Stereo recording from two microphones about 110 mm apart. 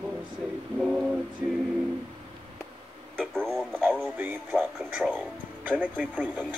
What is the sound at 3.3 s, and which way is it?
Speech, 5° left (ahead or behind).